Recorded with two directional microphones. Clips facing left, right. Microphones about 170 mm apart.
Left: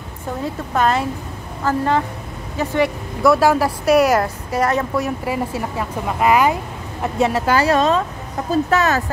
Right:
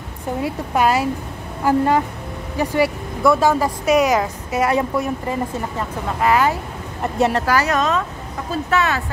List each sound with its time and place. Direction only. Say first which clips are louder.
0.4 s a woman's voice: right 1 dB; 10° right (ahead or behind)
3.3 s speech: left 1 dB; 10° left (ahead or behind)
4.2 s a woman's voice: left 1 dB; 10° right (ahead or behind)
4.9 s speech: left 1 dB; 5° left (ahead or behind)
7.0 s speech: even; centre (ahead or behind)
7.4 s a woman's voice: left 3 dB; 30° left (ahead or behind)